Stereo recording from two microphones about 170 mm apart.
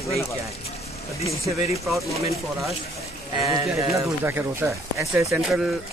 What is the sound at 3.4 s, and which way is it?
Speech, 20° right (ahead or behind).